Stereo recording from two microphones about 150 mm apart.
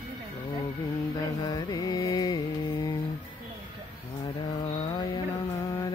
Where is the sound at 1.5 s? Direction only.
25° left (ahead or behind).